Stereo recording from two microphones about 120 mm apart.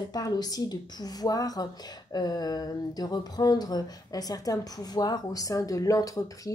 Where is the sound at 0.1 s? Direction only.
35° left (ahead or behind).